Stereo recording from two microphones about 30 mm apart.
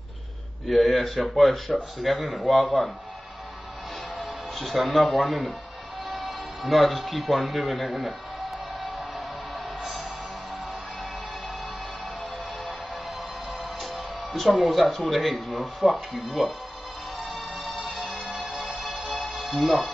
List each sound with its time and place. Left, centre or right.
0.7 s speech: centre
4.6 s speech: centre
9.8 s music: centre
13.5 s music: centre
14.7 s speech: centre
17.2 s bagpipes: centre
18.8 s music: centre